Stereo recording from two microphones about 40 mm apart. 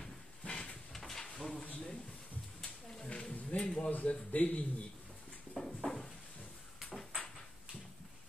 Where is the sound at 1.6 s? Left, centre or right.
Left.